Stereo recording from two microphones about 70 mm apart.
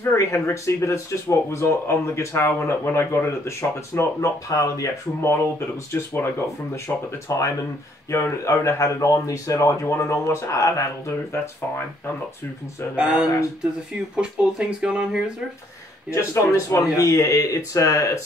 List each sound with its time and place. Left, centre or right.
0.0 s speech: left
5.9 s speech: left
6.9 s speech: left
7.2 s speech: left
12.9 s speech: centre
16.1 s speech: left